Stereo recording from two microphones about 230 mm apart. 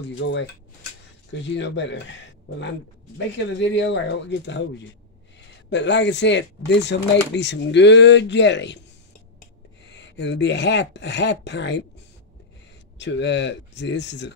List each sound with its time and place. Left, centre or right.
0.0 s speech: left
3.3 s speech: left
5.7 s speech: left
9.8 s speech: left
12.9 s speech: left